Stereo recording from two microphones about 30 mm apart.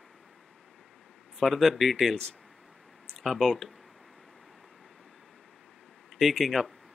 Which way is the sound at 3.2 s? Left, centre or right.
Centre.